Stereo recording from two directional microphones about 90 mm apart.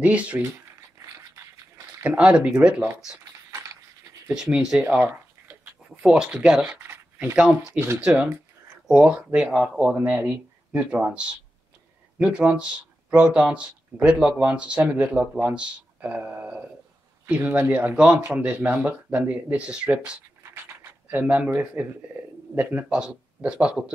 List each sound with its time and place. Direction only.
0.0 s speech: 15° right (ahead or behind)
2.0 s speech: 15° right (ahead or behind)
4.3 s speech: 5° right (ahead or behind)
4.8 s a sound: 25° right (ahead or behind)
6.0 s speech: 10° right (ahead or behind)
8.0 s speech: 10° right (ahead or behind)